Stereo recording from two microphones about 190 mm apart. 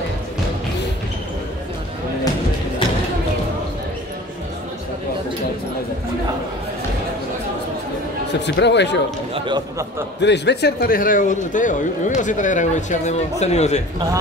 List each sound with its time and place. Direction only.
8.3 s speech: 65° left (ahead or behind)
9.3 s a man's voice: 25° right (ahead or behind)
10.2 s a man's voice: 65° left (ahead or behind); by 13.7 s 35° left (ahead or behind)